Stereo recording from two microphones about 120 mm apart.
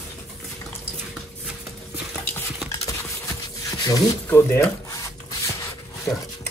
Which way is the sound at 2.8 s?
25° left (ahead or behind).